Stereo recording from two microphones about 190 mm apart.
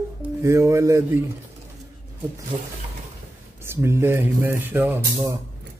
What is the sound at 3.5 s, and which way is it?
Mantra, 15° right (ahead or behind).